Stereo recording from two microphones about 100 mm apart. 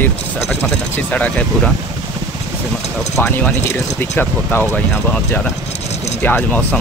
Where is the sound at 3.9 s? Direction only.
20° left (ahead or behind).